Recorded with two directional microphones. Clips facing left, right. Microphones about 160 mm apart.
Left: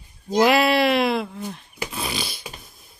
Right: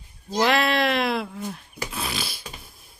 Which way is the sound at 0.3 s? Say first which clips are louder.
Left 4 dB; 10° left (ahead or behind).